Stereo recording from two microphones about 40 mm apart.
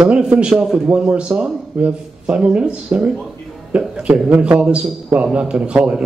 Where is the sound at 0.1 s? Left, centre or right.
Right.